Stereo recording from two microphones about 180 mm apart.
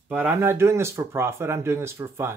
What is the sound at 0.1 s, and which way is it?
Speech, 10° right (ahead or behind).